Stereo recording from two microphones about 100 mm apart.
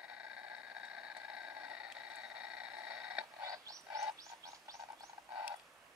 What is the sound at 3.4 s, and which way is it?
Wild animals, 35° right (ahead or behind).